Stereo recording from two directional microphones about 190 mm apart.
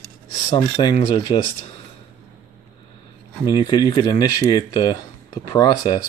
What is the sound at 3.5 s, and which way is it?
Speech, 20° left (ahead or behind).